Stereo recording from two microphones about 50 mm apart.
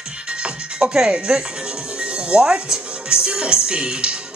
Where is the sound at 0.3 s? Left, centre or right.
Centre.